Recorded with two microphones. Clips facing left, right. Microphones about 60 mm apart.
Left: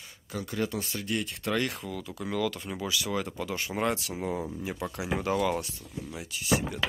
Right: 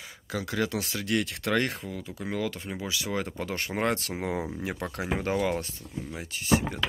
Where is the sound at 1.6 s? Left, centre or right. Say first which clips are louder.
Right 2 dB; right.